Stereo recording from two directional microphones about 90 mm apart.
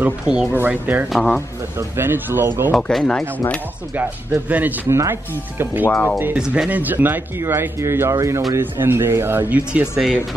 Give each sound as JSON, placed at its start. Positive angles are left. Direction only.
{"t": 0.0, "sound": "speech", "side_deg": -10}
{"t": 1.1, "sound": "speech", "side_deg": 5}
{"t": 1.8, "sound": "speech", "side_deg": -25}
{"t": 2.7, "sound": "speech", "side_deg": 5}
{"t": 3.9, "sound": "speech", "side_deg": -20}
{"t": 4.8, "sound": "speech", "side_deg": -30}
{"t": 5.9, "sound": "speech", "side_deg": 20}
{"t": 6.3, "sound": "speech", "side_deg": -10}
{"t": 6.7, "sound": "speech", "side_deg": -20}
{"t": 8.5, "sound": "speech", "side_deg": -25}
{"t": 9.7, "sound": "speech", "side_deg": -10}